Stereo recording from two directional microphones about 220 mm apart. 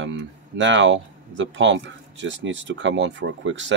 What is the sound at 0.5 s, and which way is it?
Speech, 55° right (ahead or behind).